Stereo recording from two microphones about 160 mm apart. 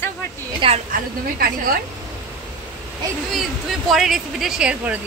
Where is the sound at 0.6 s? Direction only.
30° right (ahead or behind).